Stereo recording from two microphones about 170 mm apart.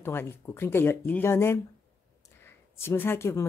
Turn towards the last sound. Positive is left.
turn(degrees=15)  # may be behind; listen again after turning